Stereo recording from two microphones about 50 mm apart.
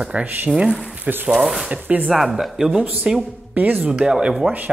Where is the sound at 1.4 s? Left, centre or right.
Centre.